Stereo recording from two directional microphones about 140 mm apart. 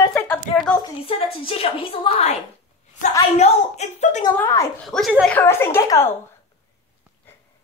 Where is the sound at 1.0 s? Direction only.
40° left (ahead or behind); by 4.3 s 60° left (ahead or behind).